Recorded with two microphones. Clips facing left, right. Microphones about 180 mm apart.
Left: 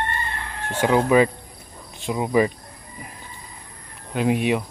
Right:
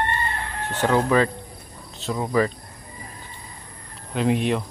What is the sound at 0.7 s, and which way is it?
Chicken, 10° left (ahead or behind).